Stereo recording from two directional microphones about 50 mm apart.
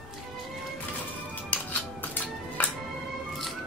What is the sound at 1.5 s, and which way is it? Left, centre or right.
Music, left.